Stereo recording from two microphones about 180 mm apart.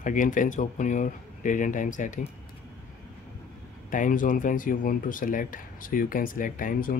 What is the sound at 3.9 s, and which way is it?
Speech, 45° left (ahead or behind).